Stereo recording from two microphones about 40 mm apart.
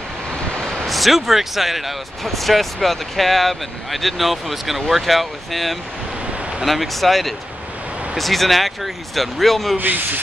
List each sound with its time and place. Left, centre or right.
0.8 s speech: centre
9.8 s speech: right